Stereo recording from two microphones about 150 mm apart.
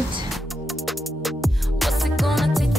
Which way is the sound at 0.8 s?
Centre (ahead or behind).